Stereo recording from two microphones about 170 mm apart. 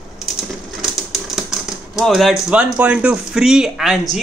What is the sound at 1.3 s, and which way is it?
Speech, centre (ahead or behind).